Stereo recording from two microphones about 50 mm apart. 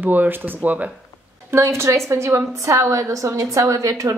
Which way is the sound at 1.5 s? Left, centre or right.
Right.